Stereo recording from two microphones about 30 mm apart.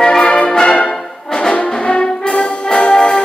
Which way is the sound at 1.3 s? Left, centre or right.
Left.